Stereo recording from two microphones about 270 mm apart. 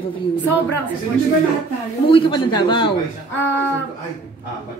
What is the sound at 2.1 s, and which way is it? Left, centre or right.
Speech, centre.